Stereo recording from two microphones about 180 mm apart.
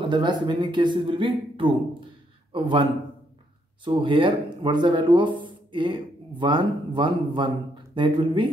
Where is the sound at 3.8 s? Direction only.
30° right (ahead or behind).